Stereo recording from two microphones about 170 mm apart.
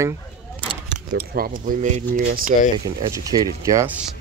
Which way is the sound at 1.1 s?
55° right (ahead or behind).